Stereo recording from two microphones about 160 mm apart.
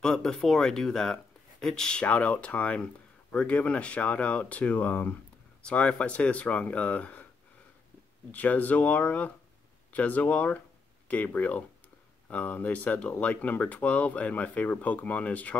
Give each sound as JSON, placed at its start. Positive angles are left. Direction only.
{"t": 0.0, "sound": "speech", "side_deg": 5}
{"t": 8.3, "sound": "speech", "side_deg": 10}